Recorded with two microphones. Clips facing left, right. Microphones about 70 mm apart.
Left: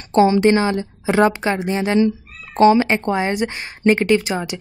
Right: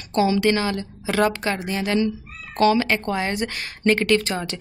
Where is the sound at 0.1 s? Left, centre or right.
Left.